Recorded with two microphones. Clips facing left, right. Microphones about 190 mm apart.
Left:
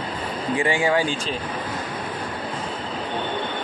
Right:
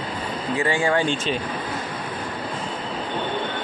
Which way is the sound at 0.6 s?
10° left (ahead or behind).